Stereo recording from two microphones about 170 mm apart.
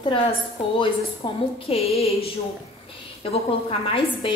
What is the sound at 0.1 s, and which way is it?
A woman's voice, 30° left (ahead or behind).